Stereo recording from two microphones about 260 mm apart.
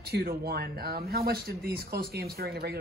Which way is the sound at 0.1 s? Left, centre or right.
Right.